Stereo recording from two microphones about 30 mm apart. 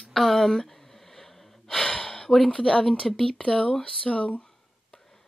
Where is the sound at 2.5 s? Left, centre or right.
Centre.